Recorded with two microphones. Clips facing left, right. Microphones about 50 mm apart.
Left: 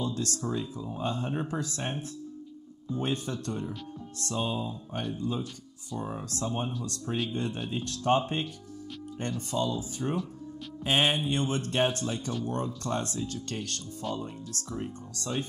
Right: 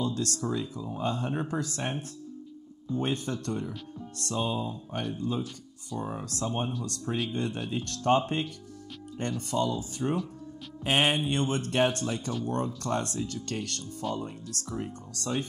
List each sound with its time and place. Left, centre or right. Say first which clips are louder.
0.0 s speech: right 1 dB; right
5.0 s speech: even; right
5.9 s speech: right 1 dB; centre
6.2 s speech: right 1 dB; right